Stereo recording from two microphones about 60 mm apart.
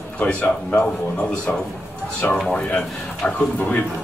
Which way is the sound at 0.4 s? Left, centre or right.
Left.